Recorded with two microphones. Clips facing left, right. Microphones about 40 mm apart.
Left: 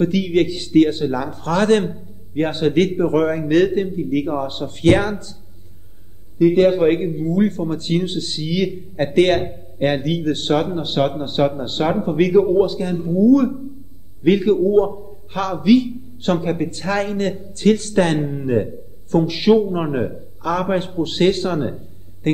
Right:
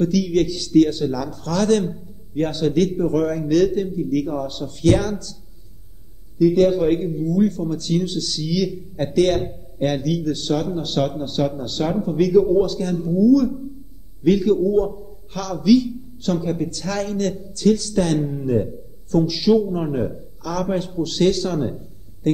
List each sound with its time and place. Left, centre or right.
0.0 s speech: left
6.3 s speech: left
12.6 s a man's voice: left